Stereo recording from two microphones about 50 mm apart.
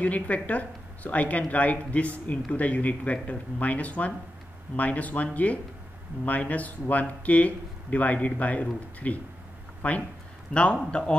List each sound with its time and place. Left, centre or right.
0.0 s speech: left
9.8 s speech: left